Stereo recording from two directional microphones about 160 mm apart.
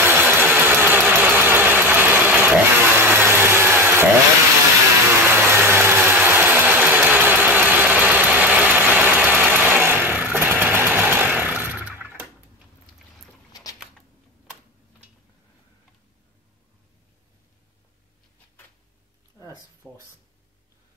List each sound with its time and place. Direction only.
0.0 s vehicle: 15° right (ahead or behind)
5.3 s engine: 15° right (ahead or behind)
13.5 s patter: 25° left (ahead or behind)
19.8 s a sound: centre (ahead or behind)